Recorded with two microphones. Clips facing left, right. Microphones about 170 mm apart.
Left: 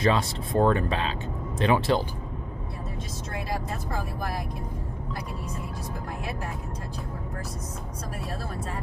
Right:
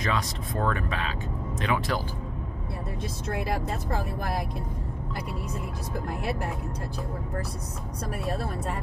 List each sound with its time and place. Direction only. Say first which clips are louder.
0.0 s speech: left 5 dB; 30° left (ahead or behind)
3.3 s speech: right 1 dB; 60° right (ahead or behind)